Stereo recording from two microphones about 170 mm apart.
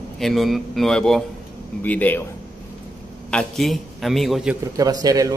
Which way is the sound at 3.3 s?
Centre (ahead or behind).